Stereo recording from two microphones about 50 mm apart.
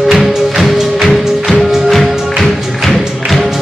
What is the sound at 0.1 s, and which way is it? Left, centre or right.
Music, centre.